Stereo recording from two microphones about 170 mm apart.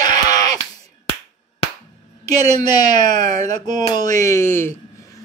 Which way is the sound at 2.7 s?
25° left (ahead or behind).